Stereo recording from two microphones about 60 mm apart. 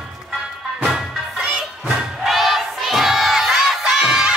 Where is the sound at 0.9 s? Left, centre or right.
Centre.